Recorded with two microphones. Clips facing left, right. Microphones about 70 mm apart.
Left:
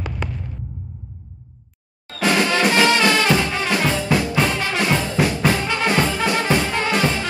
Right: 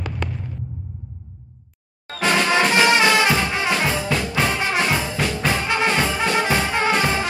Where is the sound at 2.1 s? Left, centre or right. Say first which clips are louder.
Left 1 dB; right.